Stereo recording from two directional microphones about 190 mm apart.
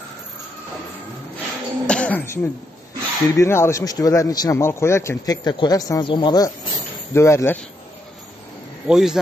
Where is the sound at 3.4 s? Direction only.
15° left (ahead or behind).